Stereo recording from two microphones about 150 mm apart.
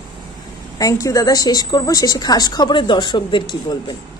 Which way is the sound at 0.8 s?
20° left (ahead or behind).